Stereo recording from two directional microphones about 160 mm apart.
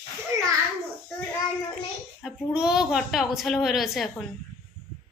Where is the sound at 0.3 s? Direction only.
20° right (ahead or behind).